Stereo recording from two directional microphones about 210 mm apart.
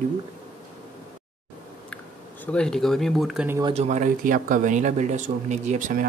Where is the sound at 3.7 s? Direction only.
35° right (ahead or behind).